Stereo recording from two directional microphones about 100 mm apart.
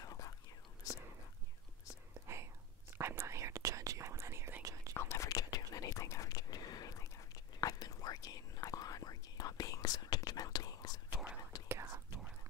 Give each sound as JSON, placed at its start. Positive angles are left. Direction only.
{"t": 0.0, "sound": "whispering", "side_deg": 35}
{"t": 2.2, "sound": "whispering", "side_deg": -25}
{"t": 4.9, "sound": "whispering", "side_deg": 25}
{"t": 11.7, "sound": "whispering", "side_deg": -25}